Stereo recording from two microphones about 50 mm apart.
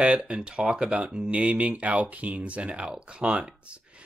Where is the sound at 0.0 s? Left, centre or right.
Right.